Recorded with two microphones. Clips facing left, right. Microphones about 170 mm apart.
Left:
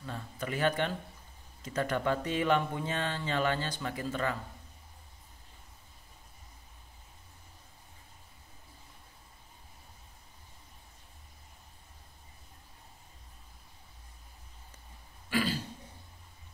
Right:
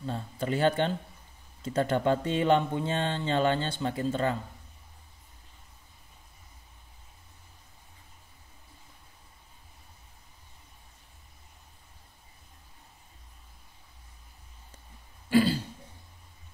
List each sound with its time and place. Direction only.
0.0 s a sound: 30° right (ahead or behind)
1.6 s speech: 30° right (ahead or behind)
15.2 s throat clearing: 30° right (ahead or behind)